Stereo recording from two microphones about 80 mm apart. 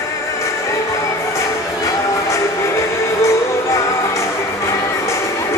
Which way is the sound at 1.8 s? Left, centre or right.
Left.